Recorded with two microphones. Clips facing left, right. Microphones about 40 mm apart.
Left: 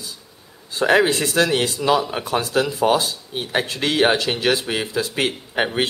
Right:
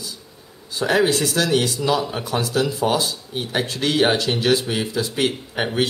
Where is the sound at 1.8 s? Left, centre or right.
Centre.